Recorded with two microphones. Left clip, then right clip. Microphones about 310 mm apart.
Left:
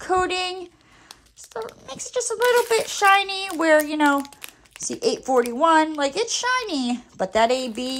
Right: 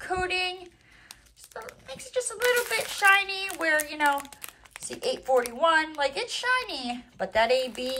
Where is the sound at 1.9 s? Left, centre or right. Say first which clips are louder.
Left 4 dB; centre.